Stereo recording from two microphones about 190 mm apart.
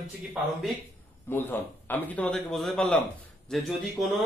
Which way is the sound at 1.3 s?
10° left (ahead or behind).